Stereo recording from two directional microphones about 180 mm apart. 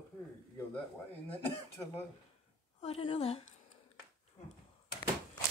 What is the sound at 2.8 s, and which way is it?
Speech, 35° left (ahead or behind).